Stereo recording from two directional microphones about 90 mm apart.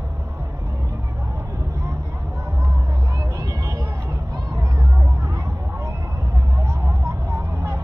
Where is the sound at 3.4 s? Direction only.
40° right (ahead or behind).